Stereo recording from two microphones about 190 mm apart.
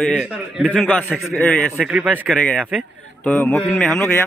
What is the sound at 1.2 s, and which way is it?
Speech, 10° left (ahead or behind).